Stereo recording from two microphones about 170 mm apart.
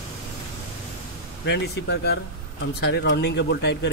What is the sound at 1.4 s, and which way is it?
Speech, 85° left.